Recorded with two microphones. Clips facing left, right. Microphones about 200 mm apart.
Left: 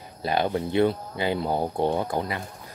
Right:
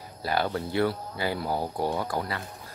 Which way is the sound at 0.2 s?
20° left (ahead or behind).